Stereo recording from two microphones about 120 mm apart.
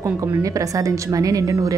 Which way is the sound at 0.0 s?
30° right (ahead or behind).